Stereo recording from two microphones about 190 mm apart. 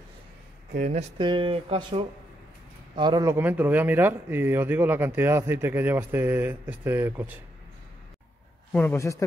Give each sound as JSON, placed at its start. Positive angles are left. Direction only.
{"t": 0.7, "sound": "speech", "side_deg": -35}
{"t": 8.7, "sound": "a man's voice", "side_deg": 10}